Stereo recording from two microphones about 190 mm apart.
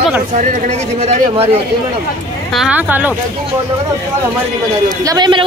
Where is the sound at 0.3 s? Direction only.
40° right (ahead or behind).